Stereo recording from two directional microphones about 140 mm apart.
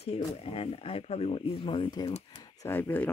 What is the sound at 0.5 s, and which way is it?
Speech, 45° left (ahead or behind).